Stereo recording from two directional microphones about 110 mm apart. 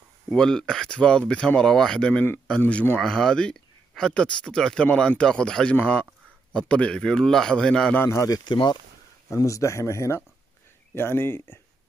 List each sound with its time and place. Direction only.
0.3 s speech: 5° left (ahead or behind)
8.0 s speech: 25° left (ahead or behind)
8.5 s speech: 45° left (ahead or behind)
9.3 s speech: 30° left (ahead or behind)